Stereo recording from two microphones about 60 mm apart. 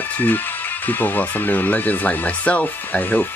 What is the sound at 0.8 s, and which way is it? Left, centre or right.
Speech, left.